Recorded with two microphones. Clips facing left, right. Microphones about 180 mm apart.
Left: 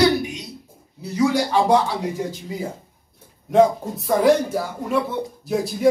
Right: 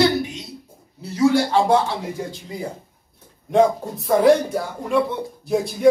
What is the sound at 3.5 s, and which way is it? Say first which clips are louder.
Speech: left 1 dB; centre (ahead or behind).